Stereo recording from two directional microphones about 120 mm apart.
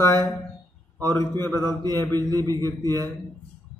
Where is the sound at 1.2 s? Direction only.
20° left (ahead or behind).